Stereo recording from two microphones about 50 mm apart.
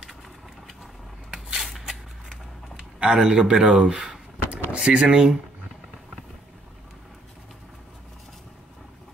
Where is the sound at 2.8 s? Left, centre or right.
Centre.